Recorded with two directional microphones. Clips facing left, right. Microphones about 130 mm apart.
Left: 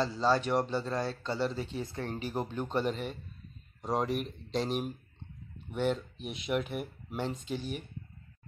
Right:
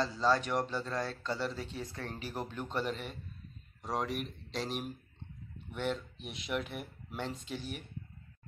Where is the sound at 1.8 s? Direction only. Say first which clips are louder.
Left 4 dB; 25° left (ahead or behind).